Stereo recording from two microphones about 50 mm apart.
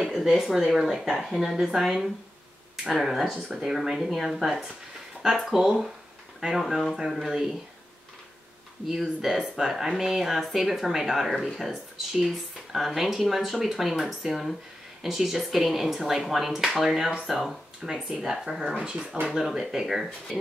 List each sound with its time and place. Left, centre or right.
0.0 s a sound: centre
0.4 s speech: centre
6.4 s speech: centre
7.0 s speech: centre
8.8 s speech: centre
17.8 s speech: centre